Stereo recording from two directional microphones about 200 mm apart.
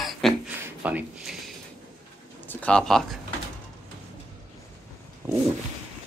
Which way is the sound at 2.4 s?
10° left (ahead or behind).